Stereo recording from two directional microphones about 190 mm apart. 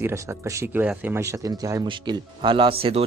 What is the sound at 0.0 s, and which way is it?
Speech, 15° right (ahead or behind).